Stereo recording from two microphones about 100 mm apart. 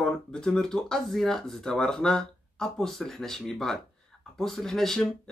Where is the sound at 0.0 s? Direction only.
5° left (ahead or behind).